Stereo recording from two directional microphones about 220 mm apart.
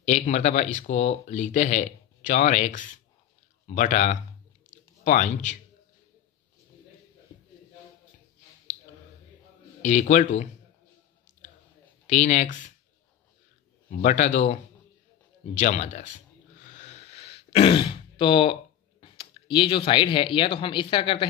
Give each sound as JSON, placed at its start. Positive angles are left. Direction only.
{"t": 0.0, "sound": "speech", "side_deg": 30}
{"t": 9.8, "sound": "speech", "side_deg": 35}
{"t": 12.1, "sound": "speech", "side_deg": 35}
{"t": 13.8, "sound": "speech", "side_deg": 35}
{"t": 16.6, "sound": "throat clearing", "side_deg": 30}